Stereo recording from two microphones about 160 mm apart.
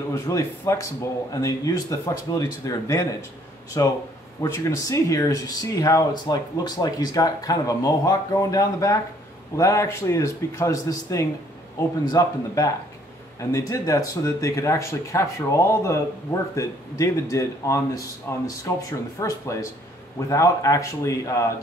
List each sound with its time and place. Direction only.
0.1 s speech: 15° left (ahead or behind)